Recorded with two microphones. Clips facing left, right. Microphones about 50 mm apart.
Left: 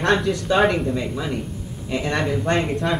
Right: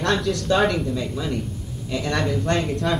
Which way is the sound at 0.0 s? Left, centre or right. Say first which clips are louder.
Left 2 dB; centre.